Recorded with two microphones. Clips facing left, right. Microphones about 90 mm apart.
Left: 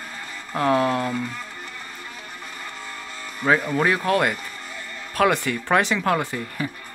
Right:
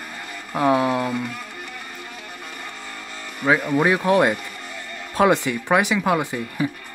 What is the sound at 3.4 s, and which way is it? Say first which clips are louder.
Speech: right 1 dB; 10° right (ahead or behind).